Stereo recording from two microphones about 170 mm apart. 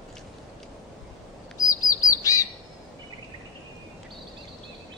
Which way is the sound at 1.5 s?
20° left (ahead or behind).